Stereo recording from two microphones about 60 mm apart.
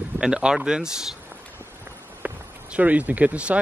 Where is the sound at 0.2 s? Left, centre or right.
Centre.